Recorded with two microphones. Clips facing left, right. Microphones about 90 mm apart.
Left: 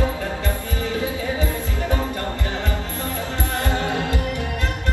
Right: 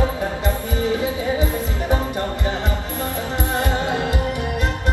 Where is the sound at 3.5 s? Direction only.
20° right (ahead or behind).